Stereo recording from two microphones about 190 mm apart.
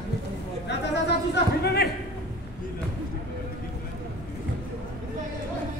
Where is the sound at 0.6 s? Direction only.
65° left (ahead or behind).